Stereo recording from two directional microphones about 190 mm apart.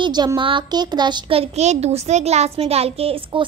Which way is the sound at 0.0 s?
20° right (ahead or behind).